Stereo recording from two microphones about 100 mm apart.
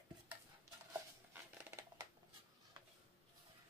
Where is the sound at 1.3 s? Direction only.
25° right (ahead or behind).